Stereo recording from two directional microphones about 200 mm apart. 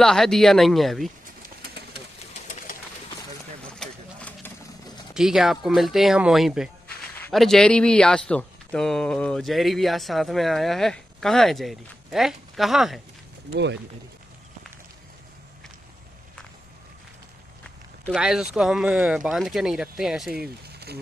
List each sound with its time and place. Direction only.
0.0 s speech: centre (ahead or behind)
1.6 s a sound: 55° right (ahead or behind)
3.7 s a sound: 5° left (ahead or behind)
5.1 s speech: centre (ahead or behind)
13.5 s speech: 60° right (ahead or behind)
18.0 s speech: 5° right (ahead or behind)